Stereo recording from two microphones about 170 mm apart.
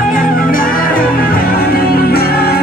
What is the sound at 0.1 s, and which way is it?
Music, 55° left (ahead or behind).